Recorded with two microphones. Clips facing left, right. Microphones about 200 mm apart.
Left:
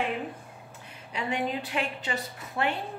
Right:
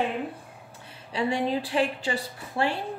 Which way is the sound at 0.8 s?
30° right (ahead or behind).